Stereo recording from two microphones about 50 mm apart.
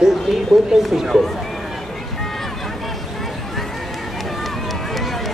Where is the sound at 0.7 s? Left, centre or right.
Centre.